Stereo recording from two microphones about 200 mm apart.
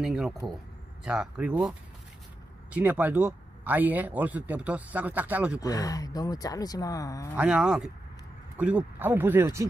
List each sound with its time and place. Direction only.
0.0 s speech: centre (ahead or behind)
5.6 s speech: 15° left (ahead or behind)
7.3 s speech: 5° right (ahead or behind)